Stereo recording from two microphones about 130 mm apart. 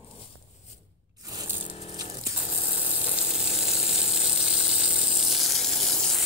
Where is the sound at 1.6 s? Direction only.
45° left (ahead or behind).